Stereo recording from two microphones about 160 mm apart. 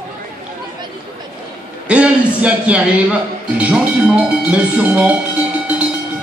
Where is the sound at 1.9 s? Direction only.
10° right (ahead or behind).